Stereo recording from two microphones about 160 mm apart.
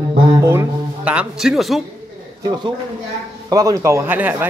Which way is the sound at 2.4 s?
25° right (ahead or behind).